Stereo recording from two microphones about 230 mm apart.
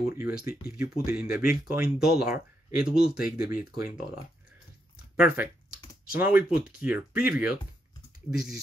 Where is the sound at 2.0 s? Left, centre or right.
Left.